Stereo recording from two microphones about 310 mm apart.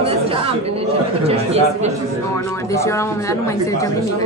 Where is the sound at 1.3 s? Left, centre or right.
Centre.